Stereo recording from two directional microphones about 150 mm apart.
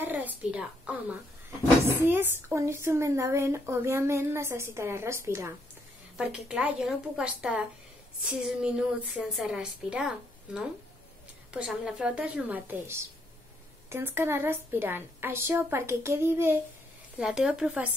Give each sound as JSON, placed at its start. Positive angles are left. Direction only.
{"t": 0.0, "sound": "a sound", "side_deg": -10}
{"t": 1.9, "sound": "a woman's voice", "side_deg": -15}
{"t": 6.1, "sound": "a woman's voice", "side_deg": -5}